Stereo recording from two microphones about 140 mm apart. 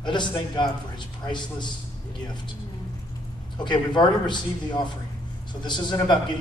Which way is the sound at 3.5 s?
30° left (ahead or behind).